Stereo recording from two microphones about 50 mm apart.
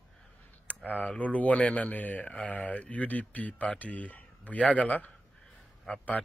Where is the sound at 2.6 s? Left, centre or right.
Left.